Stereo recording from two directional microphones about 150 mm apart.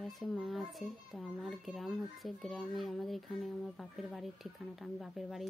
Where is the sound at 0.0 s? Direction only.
Centre (ahead or behind).